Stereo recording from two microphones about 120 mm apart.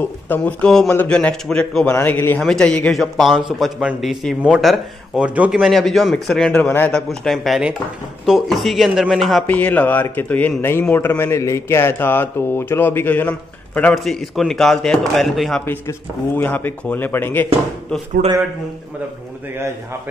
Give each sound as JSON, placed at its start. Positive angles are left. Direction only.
{"t": 0.0, "sound": "a man's voice", "side_deg": 15}
{"t": 7.1, "sound": "a man's voice", "side_deg": 0}
{"t": 9.5, "sound": "a man's voice", "side_deg": 15}
{"t": 13.9, "sound": "a man's voice", "side_deg": 0}
{"t": 15.6, "sound": "speech", "side_deg": 20}